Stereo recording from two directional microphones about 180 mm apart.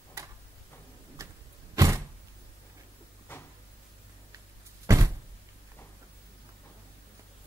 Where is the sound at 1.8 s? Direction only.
15° right (ahead or behind).